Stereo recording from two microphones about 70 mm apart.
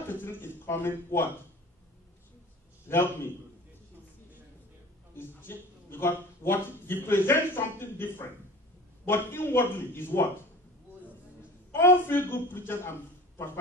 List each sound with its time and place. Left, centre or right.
0.1 s speech: left
2.9 s speech: left
5.1 s speech: left
11.7 s speech: left